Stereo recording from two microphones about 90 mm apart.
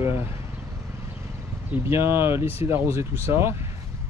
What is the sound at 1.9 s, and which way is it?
Speech, 25° right (ahead or behind).